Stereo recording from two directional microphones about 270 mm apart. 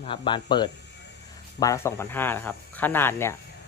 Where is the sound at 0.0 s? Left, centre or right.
Centre.